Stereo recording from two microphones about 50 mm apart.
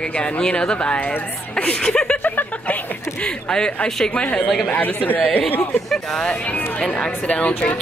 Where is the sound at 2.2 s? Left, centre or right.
Left.